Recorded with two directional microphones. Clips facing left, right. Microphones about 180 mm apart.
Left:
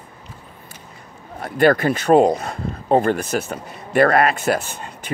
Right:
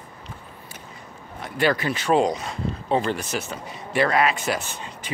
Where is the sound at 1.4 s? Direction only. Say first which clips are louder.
Left 7 dB; 50° left (ahead or behind).